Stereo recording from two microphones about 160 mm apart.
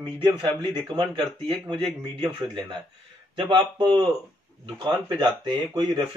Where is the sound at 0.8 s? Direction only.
30° right (ahead or behind).